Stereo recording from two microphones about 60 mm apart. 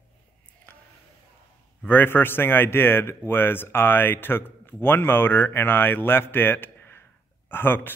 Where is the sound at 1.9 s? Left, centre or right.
Left.